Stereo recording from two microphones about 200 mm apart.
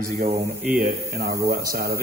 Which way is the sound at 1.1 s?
50° right (ahead or behind).